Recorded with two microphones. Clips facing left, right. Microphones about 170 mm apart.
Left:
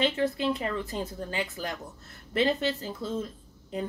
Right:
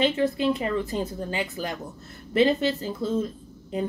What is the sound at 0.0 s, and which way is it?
A woman's voice, 15° right (ahead or behind).